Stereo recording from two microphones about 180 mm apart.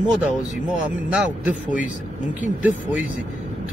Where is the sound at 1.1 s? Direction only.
5° right (ahead or behind).